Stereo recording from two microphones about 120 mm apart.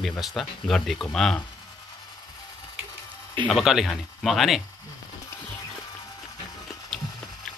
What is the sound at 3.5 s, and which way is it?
Speech, centre (ahead or behind).